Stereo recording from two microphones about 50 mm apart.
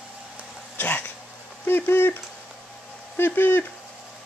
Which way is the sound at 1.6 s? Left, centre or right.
Left.